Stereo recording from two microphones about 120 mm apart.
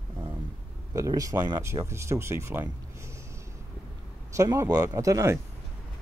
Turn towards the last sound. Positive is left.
turn(degrees=-25)  # may be behind; listen again after turning